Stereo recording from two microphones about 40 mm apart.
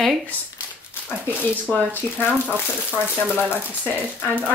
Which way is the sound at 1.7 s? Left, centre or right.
Left.